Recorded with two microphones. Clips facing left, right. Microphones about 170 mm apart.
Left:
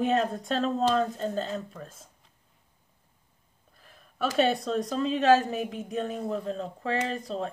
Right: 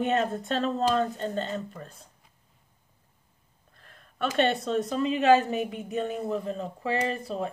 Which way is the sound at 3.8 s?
5° left (ahead or behind).